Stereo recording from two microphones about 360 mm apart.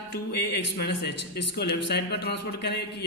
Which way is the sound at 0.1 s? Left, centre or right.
Left.